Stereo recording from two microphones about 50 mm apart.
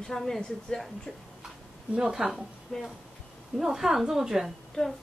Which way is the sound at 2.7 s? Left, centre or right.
Centre.